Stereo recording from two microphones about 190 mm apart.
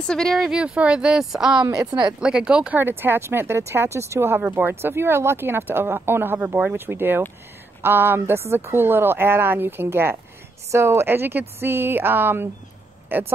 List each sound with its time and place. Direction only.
0.0 s a woman's voice: 5° left (ahead or behind)
1.9 s speech: 25° right (ahead or behind)
2.1 s speech: 5° right (ahead or behind)